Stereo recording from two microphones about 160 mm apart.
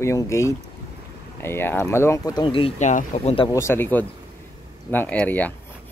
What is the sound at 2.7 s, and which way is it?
Speech, 50° left (ahead or behind).